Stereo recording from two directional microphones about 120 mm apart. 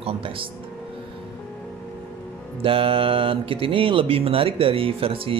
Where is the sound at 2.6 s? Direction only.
50° right (ahead or behind).